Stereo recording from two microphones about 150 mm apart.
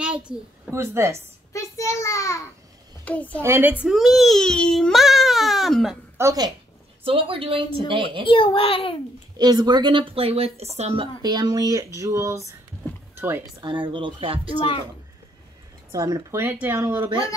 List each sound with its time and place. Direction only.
0.2 s speech: 20° right (ahead or behind)
1.5 s a child's voice: 20° left (ahead or behind)
3.1 s a woman's voice: 10° left (ahead or behind)
3.4 s speech: 15° right (ahead or behind)
3.8 s speech: centre (ahead or behind)
6.1 s a woman's voice: 25° right (ahead or behind)
7.1 s speech: 35° right (ahead or behind)
8.3 s a child's voice: 35° left (ahead or behind)
9.4 s speech: 30° right (ahead or behind); by 11.1 s 45° right (ahead or behind)
11.2 s speech: 25° right (ahead or behind)
13.6 s speech: 35° right (ahead or behind)
15.9 s speech: 20° right (ahead or behind)